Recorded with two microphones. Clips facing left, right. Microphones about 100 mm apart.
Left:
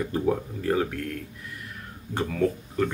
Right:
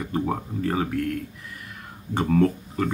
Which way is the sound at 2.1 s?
10° right (ahead or behind).